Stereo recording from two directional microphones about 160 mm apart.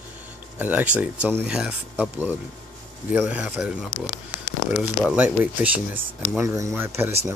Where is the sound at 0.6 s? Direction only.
10° right (ahead or behind).